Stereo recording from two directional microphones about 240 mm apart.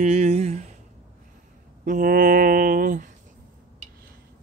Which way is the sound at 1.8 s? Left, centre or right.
Right.